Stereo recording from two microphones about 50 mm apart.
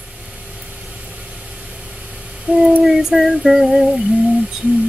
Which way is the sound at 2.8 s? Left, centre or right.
Centre.